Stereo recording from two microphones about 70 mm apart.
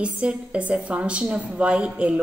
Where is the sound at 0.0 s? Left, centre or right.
Centre.